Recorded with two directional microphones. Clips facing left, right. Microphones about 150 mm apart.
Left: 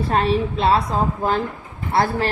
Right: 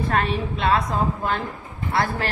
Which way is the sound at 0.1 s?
30° left (ahead or behind).